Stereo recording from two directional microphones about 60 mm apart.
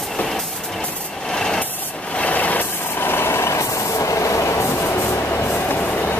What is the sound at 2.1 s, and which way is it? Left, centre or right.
Vehicle, left.